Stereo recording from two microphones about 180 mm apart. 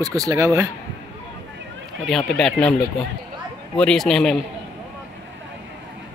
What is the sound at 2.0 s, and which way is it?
Speech, centre (ahead or behind).